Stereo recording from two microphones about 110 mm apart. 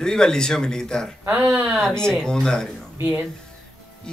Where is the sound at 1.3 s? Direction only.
15° right (ahead or behind).